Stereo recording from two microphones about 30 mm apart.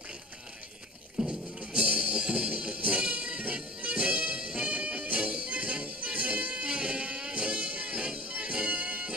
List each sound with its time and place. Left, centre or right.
1.2 s music: centre
1.9 s music: right
4.8 s music: right
5.1 s music: right
8.7 s music: right